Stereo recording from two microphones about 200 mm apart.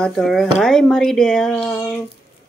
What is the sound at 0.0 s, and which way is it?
Speech, centre (ahead or behind).